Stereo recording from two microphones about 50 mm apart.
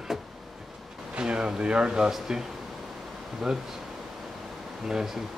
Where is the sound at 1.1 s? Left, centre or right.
Centre.